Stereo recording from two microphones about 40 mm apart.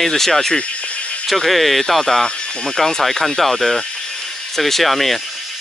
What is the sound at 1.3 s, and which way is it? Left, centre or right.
Speech, centre.